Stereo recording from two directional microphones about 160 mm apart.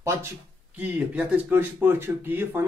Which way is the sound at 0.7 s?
10° right (ahead or behind).